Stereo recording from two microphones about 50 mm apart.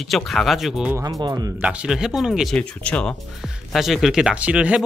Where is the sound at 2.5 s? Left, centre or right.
Centre.